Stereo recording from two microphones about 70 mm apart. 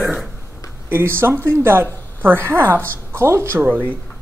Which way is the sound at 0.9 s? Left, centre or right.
Right.